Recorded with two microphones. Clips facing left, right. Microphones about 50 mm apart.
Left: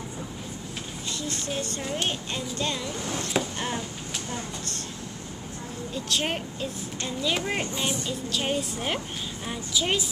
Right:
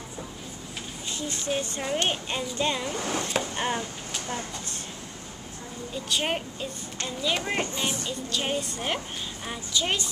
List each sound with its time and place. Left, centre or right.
1.1 s speech: centre
3.5 s speech: centre
6.0 s a woman's voice: centre